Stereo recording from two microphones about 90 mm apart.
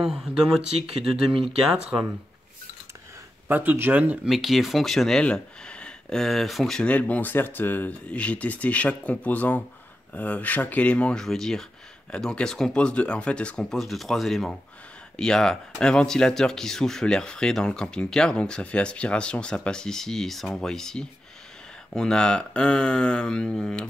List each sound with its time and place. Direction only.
0.0 s speech: 5° right (ahead or behind)
3.4 s speech: 20° right (ahead or behind)
4.3 s speech: centre (ahead or behind)